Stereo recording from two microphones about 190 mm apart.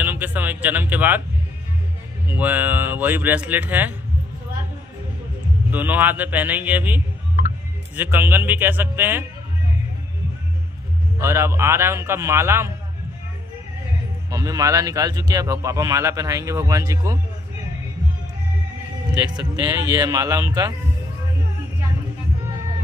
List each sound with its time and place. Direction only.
0.0 s speech: 10° right (ahead or behind)
2.2 s speech: 10° right (ahead or behind)
5.7 s speech: 10° right (ahead or behind)
11.1 s speech: 15° right (ahead or behind)
14.3 s speech: 20° right (ahead or behind)
19.3 s speech: 15° right (ahead or behind)